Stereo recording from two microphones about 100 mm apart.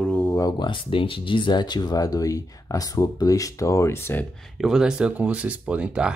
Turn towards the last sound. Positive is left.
turn(degrees=-10)  # may be behind; listen again after turning